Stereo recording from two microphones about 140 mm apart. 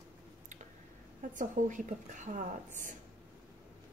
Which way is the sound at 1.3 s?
65° right (ahead or behind).